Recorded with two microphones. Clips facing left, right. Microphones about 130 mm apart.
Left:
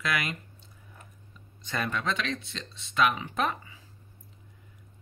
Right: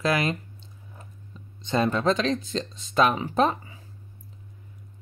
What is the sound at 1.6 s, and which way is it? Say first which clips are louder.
Speech: right 8 dB; 25° right (ahead or behind).